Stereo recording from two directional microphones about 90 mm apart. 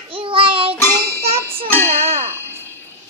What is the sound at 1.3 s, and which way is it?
Music, 90° right.